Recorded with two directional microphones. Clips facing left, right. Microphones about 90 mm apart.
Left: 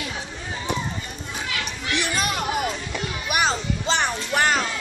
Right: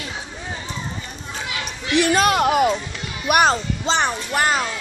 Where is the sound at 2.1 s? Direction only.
80° right.